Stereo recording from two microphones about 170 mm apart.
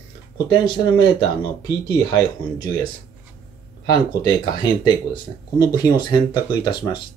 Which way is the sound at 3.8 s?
25° left (ahead or behind).